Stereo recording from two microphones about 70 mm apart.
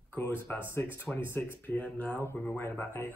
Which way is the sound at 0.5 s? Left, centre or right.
Left.